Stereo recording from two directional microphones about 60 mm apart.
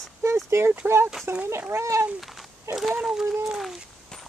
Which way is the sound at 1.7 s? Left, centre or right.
Right.